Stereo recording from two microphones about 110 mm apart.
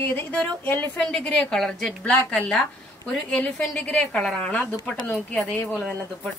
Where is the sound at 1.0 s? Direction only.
5° left (ahead or behind).